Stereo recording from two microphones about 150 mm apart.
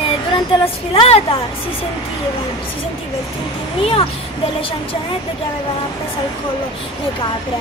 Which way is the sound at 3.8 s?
40° left (ahead or behind).